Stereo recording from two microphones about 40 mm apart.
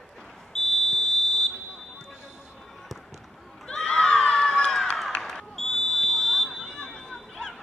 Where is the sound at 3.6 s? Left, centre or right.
Left.